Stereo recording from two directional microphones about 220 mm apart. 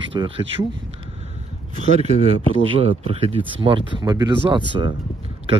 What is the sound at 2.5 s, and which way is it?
Speech, 25° right (ahead or behind).